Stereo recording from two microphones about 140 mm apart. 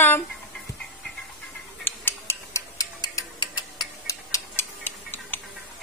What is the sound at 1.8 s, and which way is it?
Tick-tock, 15° left (ahead or behind).